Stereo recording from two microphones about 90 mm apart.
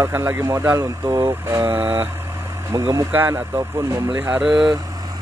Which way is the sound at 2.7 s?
35° right (ahead or behind).